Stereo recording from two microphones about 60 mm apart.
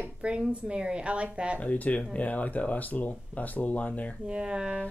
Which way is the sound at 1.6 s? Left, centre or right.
Left.